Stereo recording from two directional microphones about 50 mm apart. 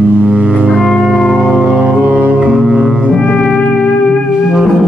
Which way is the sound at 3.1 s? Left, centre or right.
Centre.